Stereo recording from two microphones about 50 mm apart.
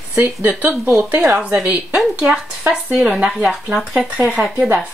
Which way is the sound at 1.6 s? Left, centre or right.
Right.